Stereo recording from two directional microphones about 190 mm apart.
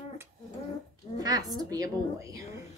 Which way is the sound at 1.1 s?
20° right (ahead or behind).